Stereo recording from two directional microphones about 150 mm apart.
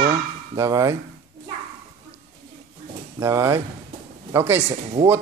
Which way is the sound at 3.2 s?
20° right (ahead or behind).